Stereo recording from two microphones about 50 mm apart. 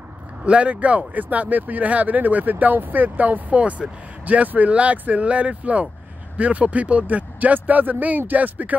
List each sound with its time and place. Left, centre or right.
0.5 s speech: right